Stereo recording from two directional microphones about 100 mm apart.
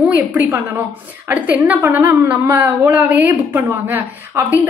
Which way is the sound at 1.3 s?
15° right (ahead or behind).